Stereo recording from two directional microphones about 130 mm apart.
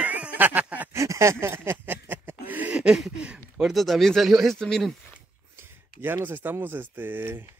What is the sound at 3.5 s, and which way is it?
Speech, centre (ahead or behind).